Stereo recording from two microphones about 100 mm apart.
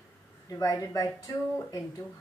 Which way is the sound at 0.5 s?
35° left (ahead or behind).